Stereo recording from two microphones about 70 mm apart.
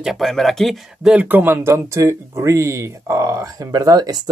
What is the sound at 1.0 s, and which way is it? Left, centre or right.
Speech, right.